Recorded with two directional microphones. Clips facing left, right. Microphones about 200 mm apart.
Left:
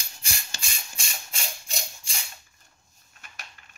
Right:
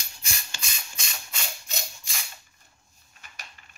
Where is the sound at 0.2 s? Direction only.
30° left (ahead or behind).